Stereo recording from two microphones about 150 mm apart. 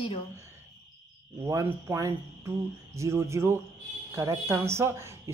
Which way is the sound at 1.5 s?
20° right (ahead or behind).